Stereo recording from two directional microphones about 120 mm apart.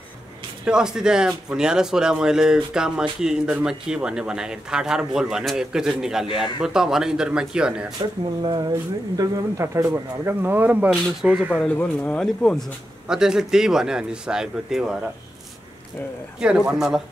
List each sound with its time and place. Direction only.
0.7 s a man's voice: 5° right (ahead or behind)
8.4 s speech: 35° right (ahead or behind); by 11.5 s 10° right (ahead or behind)
11.5 s speech: 10° left (ahead or behind)
13.1 s a man's voice: 5° right (ahead or behind)
16.3 s a man's voice: 5° right (ahead or behind)